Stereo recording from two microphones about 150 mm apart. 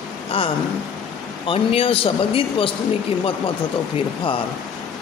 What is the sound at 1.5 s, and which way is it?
Speech, 40° left (ahead or behind).